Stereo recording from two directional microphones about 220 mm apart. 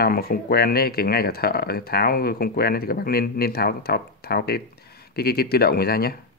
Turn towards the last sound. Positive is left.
turn(degrees=45)  # may be behind; listen again after turning